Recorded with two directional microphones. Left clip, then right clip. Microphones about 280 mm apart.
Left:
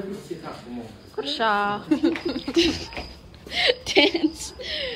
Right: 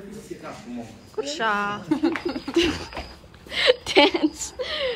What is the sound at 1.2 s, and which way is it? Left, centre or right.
A woman's voice, centre.